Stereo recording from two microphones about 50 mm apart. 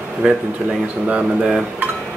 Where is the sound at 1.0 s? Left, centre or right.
Right.